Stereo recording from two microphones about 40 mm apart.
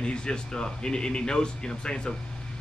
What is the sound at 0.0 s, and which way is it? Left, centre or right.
Speech, left.